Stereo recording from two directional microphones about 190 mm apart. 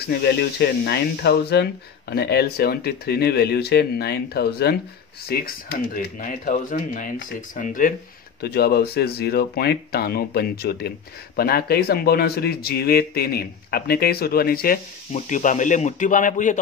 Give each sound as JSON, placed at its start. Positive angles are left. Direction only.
{"t": 0.0, "sound": "speech", "side_deg": 55}
{"t": 8.4, "sound": "speech", "side_deg": 55}